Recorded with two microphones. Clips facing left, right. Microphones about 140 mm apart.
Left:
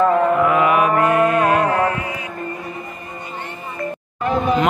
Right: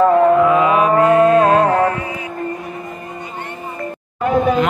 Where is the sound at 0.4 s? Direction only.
20° right (ahead or behind).